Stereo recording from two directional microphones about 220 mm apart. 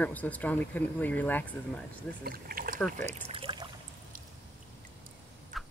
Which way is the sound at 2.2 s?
40° right (ahead or behind).